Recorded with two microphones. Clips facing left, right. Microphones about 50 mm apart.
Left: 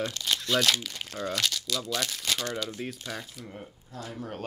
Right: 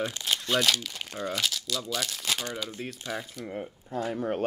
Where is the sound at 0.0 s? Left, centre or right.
Centre.